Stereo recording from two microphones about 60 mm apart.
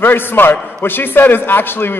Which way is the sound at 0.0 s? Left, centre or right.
Left.